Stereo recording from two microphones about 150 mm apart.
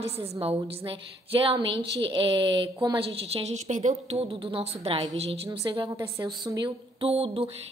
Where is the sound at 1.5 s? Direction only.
30° right (ahead or behind).